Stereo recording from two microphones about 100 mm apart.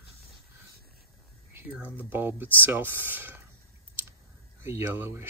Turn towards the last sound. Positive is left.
turn(degrees=-25)  # may be behind; listen again after turning